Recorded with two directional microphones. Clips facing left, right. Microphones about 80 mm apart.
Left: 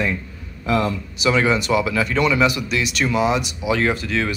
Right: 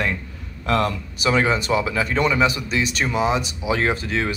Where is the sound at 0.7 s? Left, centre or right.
Centre.